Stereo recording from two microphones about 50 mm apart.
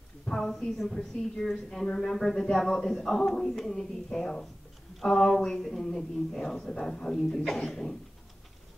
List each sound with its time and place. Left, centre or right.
0.2 s speech: centre
1.9 s speech: centre